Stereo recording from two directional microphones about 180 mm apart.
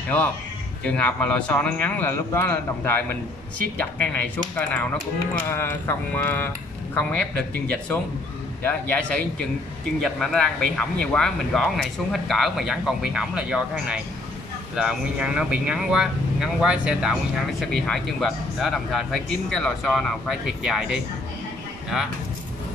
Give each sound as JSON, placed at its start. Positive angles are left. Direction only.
{"t": 0.8, "sound": "speech", "side_deg": 5}
{"t": 8.6, "sound": "speech", "side_deg": 10}